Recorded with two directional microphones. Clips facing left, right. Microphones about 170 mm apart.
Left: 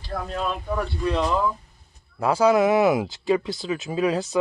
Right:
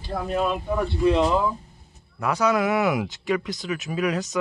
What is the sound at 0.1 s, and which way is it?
Speech, 10° right (ahead or behind).